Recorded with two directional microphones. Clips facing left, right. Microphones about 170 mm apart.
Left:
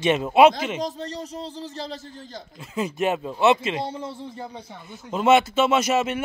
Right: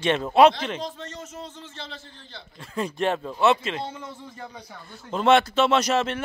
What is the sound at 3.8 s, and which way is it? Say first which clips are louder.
Speech: left 4 dB; 30° left (ahead or behind).